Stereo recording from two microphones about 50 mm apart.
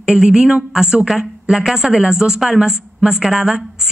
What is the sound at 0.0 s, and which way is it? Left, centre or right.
A woman's voice, centre.